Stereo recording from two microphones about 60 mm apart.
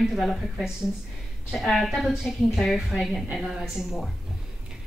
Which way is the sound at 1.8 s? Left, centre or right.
Centre.